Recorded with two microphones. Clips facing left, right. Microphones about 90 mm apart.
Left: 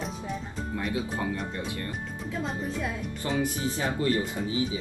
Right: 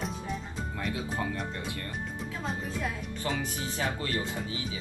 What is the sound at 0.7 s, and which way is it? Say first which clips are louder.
Speech: left 3 dB; 30° left (ahead or behind).